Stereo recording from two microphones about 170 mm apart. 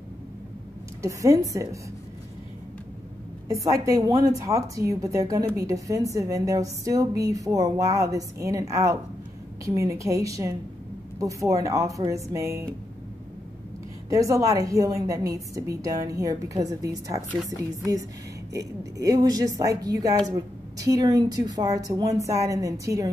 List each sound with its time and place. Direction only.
1.0 s speech: 20° right (ahead or behind)
3.4 s speech: 20° right (ahead or behind)
14.0 s speech: 20° right (ahead or behind)